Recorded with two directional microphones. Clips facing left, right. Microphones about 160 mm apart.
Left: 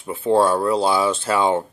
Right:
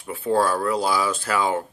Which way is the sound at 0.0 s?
25° left (ahead or behind).